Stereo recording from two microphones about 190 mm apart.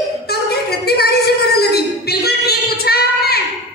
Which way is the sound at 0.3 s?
55° left (ahead or behind).